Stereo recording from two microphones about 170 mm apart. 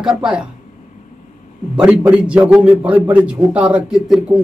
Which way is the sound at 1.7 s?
5° right (ahead or behind).